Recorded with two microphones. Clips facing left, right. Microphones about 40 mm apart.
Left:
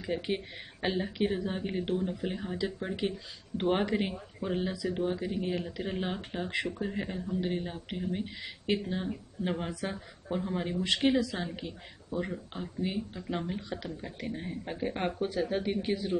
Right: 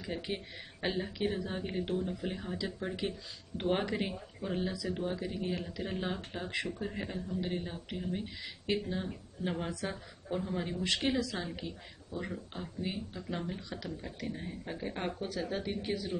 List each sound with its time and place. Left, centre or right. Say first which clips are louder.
0.0 s a woman's voice: left 5 dB; left
3.0 s a woman's voice: left 4 dB; left
6.5 s speech: left 2 dB; left
6.8 s a woman's voice: left 3 dB; centre
13.3 s speech: left 4 dB; left